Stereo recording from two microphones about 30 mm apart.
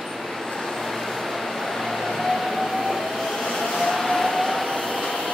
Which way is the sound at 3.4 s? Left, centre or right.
Left.